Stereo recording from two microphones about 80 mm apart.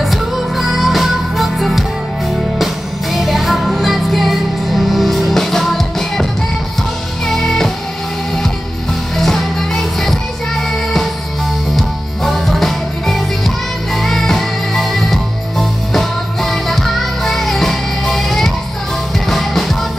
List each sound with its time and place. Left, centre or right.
0.0 s music: centre
7.2 s music: centre
9.1 s music: centre
11.7 s music: centre